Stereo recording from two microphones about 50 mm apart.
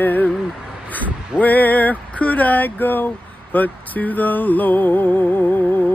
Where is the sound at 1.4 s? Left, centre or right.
Left.